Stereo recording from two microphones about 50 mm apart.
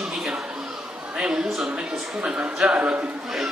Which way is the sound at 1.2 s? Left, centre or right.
Centre.